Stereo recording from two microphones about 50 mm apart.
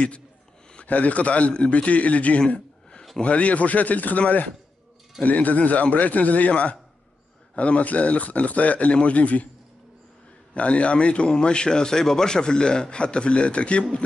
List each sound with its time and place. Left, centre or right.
0.7 s a man's voice: left
10.5 s speech: left